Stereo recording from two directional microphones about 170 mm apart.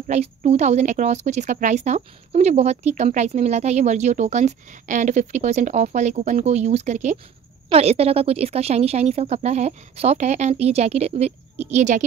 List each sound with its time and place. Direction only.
0.1 s a woman's voice: 40° right (ahead or behind)